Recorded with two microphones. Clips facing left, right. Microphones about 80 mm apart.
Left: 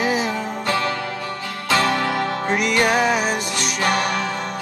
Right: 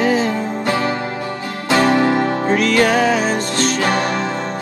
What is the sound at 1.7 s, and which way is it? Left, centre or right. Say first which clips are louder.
Music: right 6 dB; right.